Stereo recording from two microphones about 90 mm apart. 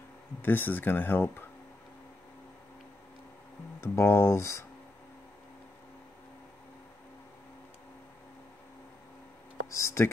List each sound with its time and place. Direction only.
0.4 s speech: 20° left (ahead or behind)
3.8 s speech: 25° left (ahead or behind)
9.7 s speech: 30° left (ahead or behind)